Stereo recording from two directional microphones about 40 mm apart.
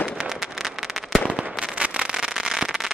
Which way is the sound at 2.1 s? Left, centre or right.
Centre.